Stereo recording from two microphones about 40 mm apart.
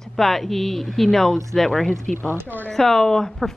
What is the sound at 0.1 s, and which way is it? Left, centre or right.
A woman's voice, centre.